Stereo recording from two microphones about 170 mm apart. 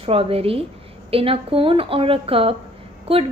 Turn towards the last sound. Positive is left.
turn(degrees=-35)  # may be behind; listen again after turning